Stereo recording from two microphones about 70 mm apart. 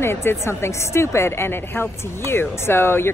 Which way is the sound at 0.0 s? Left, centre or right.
Left.